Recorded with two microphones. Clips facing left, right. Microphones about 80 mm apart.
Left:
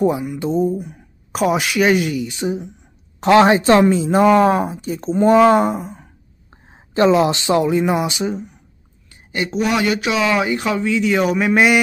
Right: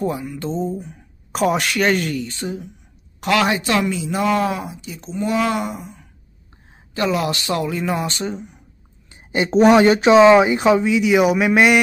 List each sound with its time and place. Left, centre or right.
0.0 s speech: centre
3.2 s speech: left
6.9 s speech: left; by 8.5 s centre
9.1 s a sound: right
9.6 s speech: right; by 11.8 s centre